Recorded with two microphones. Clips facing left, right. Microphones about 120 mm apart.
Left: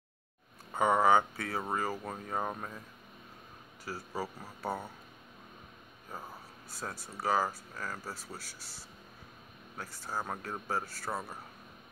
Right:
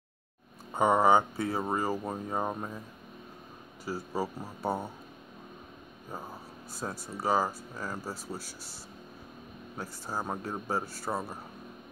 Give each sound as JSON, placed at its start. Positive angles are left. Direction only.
{"t": 0.7, "sound": "speech", "side_deg": -20}
{"t": 3.8, "sound": "speech", "side_deg": -15}
{"t": 6.8, "sound": "speech", "side_deg": -20}
{"t": 9.8, "sound": "speech", "side_deg": -15}